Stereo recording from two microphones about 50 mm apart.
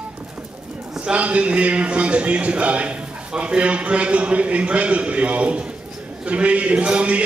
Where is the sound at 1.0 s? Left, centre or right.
Right.